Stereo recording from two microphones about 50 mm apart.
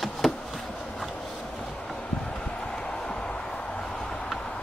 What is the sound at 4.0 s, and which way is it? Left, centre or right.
Vehicle, centre.